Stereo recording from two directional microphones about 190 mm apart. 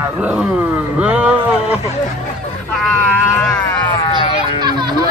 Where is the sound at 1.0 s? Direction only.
5° right (ahead or behind).